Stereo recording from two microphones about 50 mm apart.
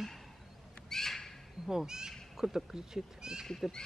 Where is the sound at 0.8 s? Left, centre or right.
Centre.